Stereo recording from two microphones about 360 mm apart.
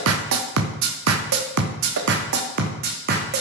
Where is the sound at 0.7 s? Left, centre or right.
Right.